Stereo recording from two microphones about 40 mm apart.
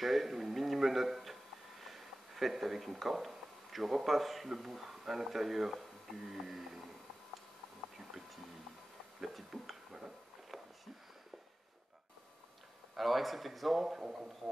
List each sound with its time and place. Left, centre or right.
0.0 s speech: centre
9.2 s a sound: centre
12.9 s a man's voice: centre
13.9 s speech: centre